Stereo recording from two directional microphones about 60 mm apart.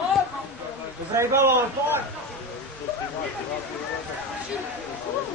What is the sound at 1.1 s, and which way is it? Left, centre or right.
Speech, right.